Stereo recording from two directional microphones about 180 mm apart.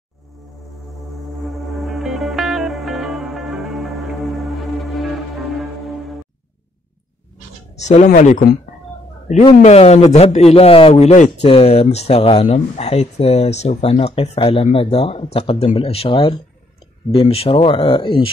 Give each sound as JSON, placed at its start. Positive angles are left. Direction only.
{"t": 1.4, "sound": "music", "side_deg": 0}
{"t": 7.7, "sound": "a sound", "side_deg": 40}
{"t": 8.1, "sound": "speech", "side_deg": 45}